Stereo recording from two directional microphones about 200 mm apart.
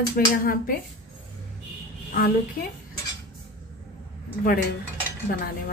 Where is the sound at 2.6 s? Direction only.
45° left (ahead or behind).